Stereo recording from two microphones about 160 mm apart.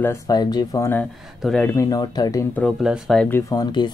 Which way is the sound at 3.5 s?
25° left (ahead or behind).